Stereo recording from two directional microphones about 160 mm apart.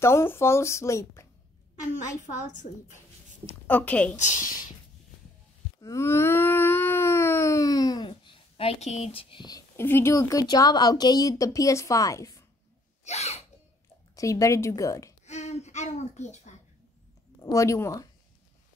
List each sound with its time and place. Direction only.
0.0 s speech: 15° left (ahead or behind)
3.4 s speech: 10° left (ahead or behind)
4.2 s speech: 55° left (ahead or behind)
5.8 s a sound: 20° left (ahead or behind)
13.0 s a sound: 40° left (ahead or behind)
14.1 s a woman's voice: 20° left (ahead or behind)
15.2 s a child's voice: 45° left (ahead or behind)
17.4 s a woman's voice: 20° left (ahead or behind)